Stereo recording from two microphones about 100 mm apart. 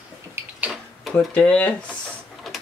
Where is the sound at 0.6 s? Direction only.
5° right (ahead or behind).